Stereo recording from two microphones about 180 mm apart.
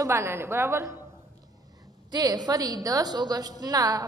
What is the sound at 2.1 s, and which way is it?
A woman's voice, 20° right (ahead or behind).